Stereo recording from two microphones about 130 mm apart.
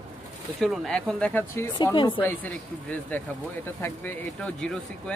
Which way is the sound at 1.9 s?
40° left (ahead or behind).